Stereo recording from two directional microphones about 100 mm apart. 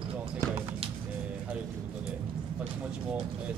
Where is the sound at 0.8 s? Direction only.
70° right (ahead or behind).